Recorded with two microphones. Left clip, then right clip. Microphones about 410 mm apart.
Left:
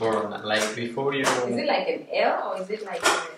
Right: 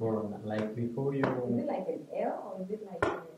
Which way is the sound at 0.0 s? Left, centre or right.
Centre.